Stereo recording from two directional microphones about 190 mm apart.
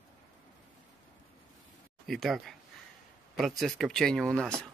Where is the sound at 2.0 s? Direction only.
Centre (ahead or behind).